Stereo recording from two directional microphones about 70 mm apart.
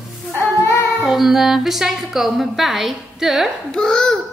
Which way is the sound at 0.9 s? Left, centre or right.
Centre.